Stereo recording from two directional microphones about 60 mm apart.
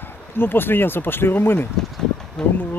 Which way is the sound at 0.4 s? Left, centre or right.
Left.